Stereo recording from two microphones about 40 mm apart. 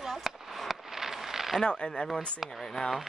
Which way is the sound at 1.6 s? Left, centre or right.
Left.